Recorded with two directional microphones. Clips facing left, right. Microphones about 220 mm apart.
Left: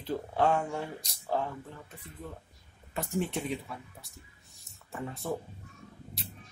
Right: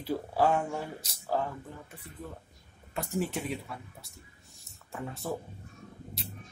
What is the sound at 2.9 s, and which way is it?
Speech, centre (ahead or behind).